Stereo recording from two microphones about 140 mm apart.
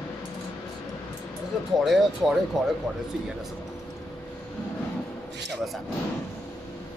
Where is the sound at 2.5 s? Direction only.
Centre (ahead or behind).